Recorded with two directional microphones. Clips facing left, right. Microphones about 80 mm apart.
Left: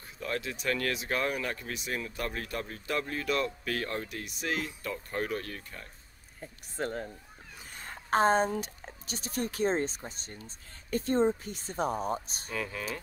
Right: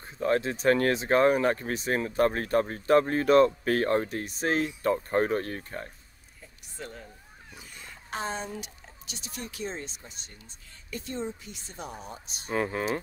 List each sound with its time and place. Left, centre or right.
0.0 s speech: right
6.4 s speech: left
12.4 s speech: right